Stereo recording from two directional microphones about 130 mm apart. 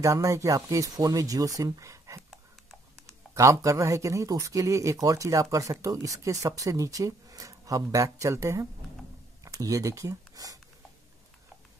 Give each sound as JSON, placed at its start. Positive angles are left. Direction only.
{"t": 0.0, "sound": "speech", "side_deg": -25}
{"t": 3.3, "sound": "speech", "side_deg": -25}